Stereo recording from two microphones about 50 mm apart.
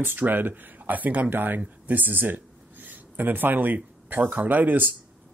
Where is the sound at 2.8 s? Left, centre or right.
Right.